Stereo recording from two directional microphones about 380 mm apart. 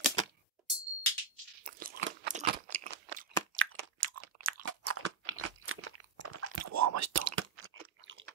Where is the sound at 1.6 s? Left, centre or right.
Right.